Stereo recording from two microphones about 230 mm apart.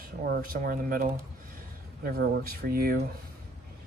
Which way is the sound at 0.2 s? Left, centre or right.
Right.